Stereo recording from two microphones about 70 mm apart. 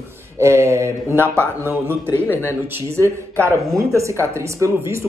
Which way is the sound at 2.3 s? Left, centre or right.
Left.